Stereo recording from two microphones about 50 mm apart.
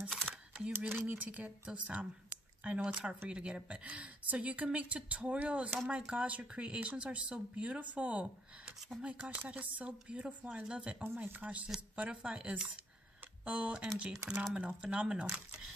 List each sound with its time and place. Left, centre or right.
0.1 s single-lens reflex camera: centre
0.8 s speech: right
2.9 s speech: centre
9.5 s speech: right